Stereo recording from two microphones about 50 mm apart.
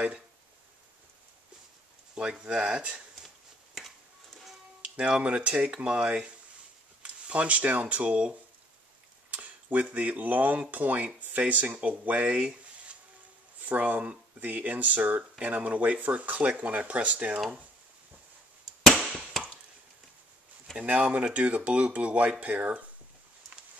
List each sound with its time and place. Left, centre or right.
2.1 s speech: right
3.7 s music: centre
4.9 s speech: right
18.8 s chop: centre
20.7 s speech: right